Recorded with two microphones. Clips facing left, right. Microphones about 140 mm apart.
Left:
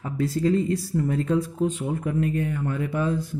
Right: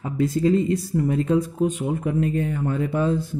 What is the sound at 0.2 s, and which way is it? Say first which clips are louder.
Speech: right 3 dB; 20° right (ahead or behind).